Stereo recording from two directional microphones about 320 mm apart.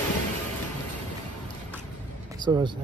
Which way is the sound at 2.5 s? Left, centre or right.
Centre.